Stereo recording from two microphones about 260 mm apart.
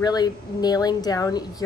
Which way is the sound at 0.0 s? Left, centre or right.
Centre.